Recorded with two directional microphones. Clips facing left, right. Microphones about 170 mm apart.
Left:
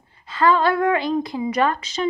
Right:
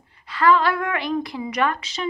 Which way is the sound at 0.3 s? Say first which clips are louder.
Left 1 dB; 25° left (ahead or behind).